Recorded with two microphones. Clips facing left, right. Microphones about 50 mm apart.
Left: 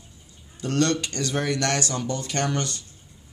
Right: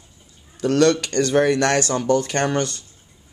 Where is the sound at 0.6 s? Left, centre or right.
Right.